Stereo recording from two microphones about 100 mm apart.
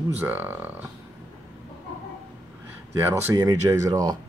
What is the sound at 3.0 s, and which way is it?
Speech, 30° right (ahead or behind).